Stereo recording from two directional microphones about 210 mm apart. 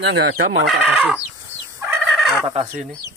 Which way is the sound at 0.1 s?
60° right (ahead or behind).